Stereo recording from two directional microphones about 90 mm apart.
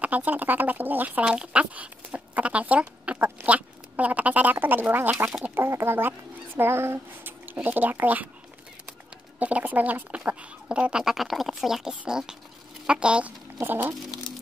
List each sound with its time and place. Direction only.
0.0 s speech: 20° right (ahead or behind)
9.4 s speech: 15° right (ahead or behind)
13.6 s speech: 25° right (ahead or behind)